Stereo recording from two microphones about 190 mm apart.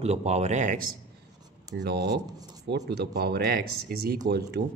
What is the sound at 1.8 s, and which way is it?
Speech, 60° right (ahead or behind).